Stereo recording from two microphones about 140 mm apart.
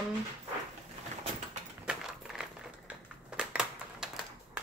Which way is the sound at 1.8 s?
5° right (ahead or behind).